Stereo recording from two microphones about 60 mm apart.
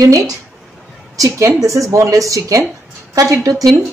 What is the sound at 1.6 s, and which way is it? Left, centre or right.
A woman's voice, right.